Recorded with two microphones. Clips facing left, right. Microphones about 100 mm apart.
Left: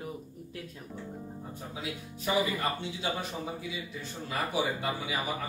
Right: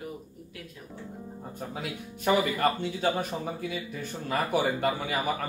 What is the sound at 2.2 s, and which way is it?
Speech, 55° right (ahead or behind).